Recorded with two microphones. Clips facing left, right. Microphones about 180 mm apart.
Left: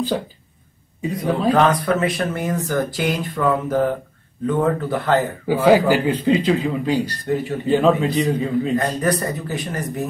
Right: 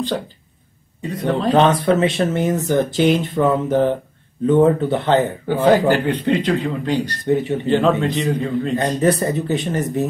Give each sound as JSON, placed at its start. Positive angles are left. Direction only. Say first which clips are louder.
{"t": 1.0, "sound": "a man's voice", "louder": "even", "side_deg": 10}
{"t": 1.5, "sound": "speech", "louder": "right 3 dB", "side_deg": -25}
{"t": 5.5, "sound": "a man's voice", "louder": "even", "side_deg": 10}
{"t": 7.2, "sound": "speech", "louder": "right 7 dB", "side_deg": -20}
{"t": 7.6, "sound": "a man's voice", "louder": "left 3 dB", "side_deg": 5}
{"t": 8.7, "sound": "speech", "louder": "right 3 dB", "side_deg": -25}